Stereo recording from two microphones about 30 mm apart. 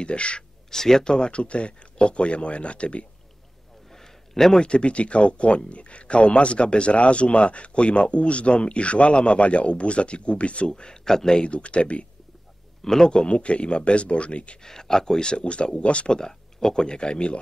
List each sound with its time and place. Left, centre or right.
0.0 s speech: left
0.7 s speech: centre
1.1 s speech: left
3.9 s a sound: centre
4.6 s speech: left
11.1 s speech: centre
11.4 s speech: left
12.8 s speech: centre
13.1 s speech: left
14.6 s speech: centre
15.2 s speech: left
16.1 s speech: left